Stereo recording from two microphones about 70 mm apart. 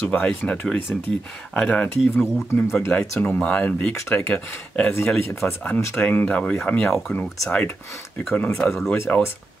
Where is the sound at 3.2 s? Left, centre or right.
Left.